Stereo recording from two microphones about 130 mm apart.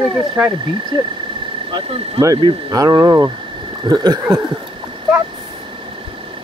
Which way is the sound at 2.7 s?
25° right (ahead or behind).